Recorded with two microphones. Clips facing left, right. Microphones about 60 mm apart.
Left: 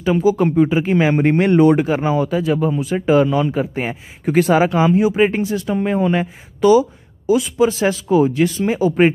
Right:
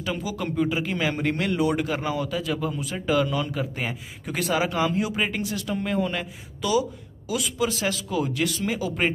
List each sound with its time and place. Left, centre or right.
0.0 s speech: left
4.6 s speech: left